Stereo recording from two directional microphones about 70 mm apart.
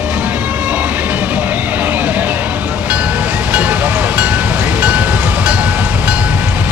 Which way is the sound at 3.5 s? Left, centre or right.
Right.